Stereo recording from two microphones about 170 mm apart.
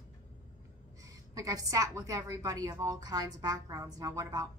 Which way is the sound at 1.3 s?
20° right (ahead or behind).